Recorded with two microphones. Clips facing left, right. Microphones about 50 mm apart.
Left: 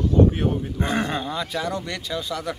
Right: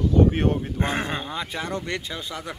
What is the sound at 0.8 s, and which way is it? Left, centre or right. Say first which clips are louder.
Speech: left 2 dB; right.